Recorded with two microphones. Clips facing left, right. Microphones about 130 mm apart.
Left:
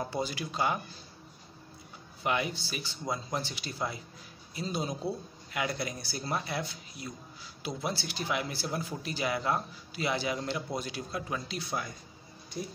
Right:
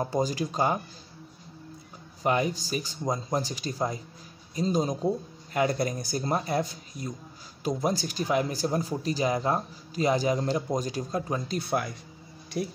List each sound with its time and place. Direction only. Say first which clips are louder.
0.0 s speech: right 6 dB; 40° right (ahead or behind)
2.2 s speech: right 5 dB; 40° right (ahead or behind); by 11.9 s 55° right (ahead or behind)
12.6 s speech: right 7 dB; 80° right